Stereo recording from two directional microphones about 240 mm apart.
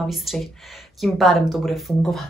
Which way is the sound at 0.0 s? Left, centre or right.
Centre.